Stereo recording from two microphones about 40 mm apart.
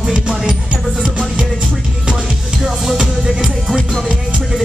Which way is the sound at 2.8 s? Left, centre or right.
Centre.